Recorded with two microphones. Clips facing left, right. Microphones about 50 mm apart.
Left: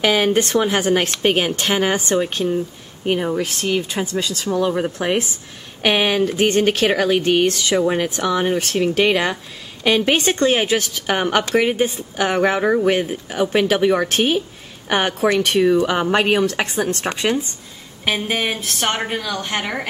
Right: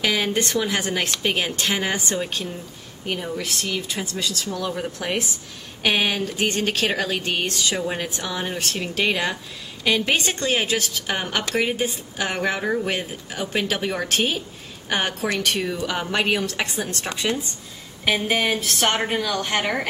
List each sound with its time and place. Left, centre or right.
0.0 s speech: left
12.6 s speech: left
13.5 s speech: left
18.3 s a sound: centre
18.9 s speech: centre